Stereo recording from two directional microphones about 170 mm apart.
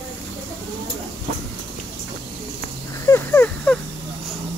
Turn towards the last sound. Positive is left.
turn(degrees=10)  # may be behind; listen again after turning